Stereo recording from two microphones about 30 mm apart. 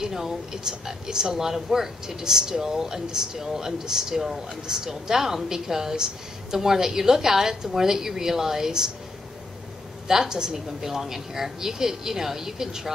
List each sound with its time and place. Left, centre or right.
0.0 s a woman's voice: centre
10.0 s a woman's voice: centre